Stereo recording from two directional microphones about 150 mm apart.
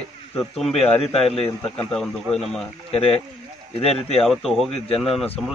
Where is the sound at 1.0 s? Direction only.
40° left (ahead or behind).